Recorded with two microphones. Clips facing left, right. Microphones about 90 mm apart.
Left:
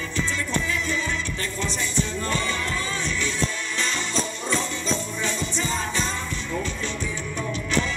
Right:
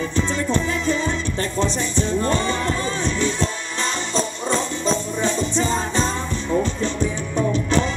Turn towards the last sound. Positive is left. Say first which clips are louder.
# right 6 dB
turn(degrees=-30)  # may be behind; listen again after turning